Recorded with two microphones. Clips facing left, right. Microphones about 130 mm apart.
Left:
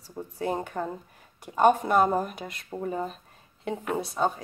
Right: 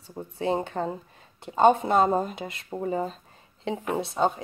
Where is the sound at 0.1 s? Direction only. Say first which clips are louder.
Right 3 dB; 20° right (ahead or behind).